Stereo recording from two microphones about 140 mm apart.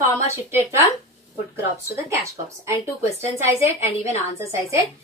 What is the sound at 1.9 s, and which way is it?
Speech, 20° right (ahead or behind).